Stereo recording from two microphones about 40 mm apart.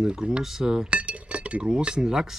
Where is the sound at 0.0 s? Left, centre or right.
Right.